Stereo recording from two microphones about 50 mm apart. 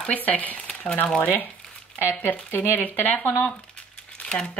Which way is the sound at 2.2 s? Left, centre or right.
Left.